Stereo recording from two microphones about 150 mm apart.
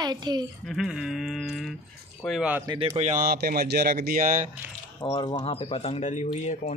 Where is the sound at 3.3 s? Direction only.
85° right; by 4.5 s 65° right (ahead or behind).